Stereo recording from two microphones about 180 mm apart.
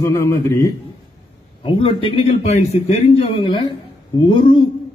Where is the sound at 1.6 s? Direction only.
30° left (ahead or behind).